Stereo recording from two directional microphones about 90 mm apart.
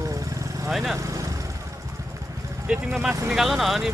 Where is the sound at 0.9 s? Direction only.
35° right (ahead or behind).